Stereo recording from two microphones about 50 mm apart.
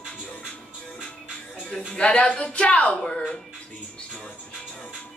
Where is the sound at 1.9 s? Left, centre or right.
Centre.